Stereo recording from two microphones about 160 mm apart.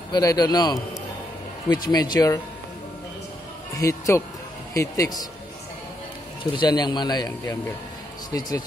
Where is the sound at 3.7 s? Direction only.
20° left (ahead or behind).